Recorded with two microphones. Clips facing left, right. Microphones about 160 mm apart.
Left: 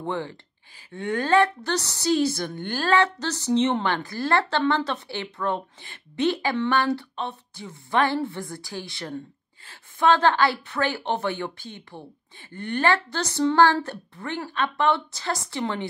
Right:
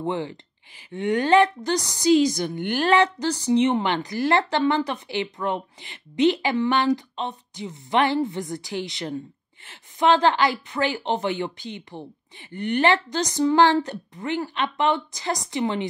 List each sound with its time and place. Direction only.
0.0 s a woman's voice: 15° right (ahead or behind)